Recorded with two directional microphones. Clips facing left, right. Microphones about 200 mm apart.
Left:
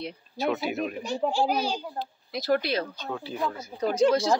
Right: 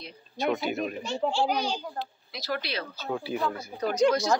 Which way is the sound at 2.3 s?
50° left (ahead or behind).